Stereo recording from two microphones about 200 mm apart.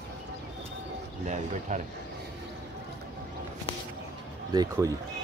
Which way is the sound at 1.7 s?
40° right (ahead or behind).